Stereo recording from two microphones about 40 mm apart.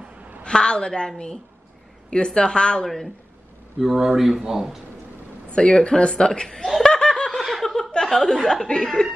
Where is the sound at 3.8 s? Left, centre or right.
Centre.